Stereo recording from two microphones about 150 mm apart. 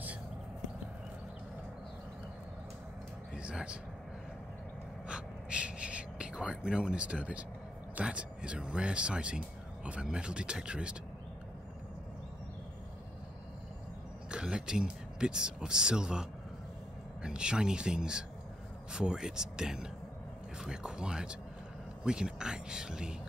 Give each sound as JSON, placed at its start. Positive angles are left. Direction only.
{"t": 3.3, "sound": "vehicle", "side_deg": -5}
{"t": 5.0, "sound": "gasp", "side_deg": -5}
{"t": 7.9, "sound": "speech", "side_deg": -5}
{"t": 14.3, "sound": "speech", "side_deg": -5}